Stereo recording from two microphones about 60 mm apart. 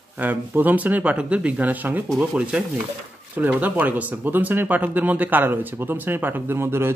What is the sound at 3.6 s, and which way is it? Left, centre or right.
Speech, right.